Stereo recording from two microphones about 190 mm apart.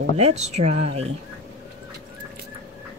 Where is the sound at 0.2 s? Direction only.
35° right (ahead or behind).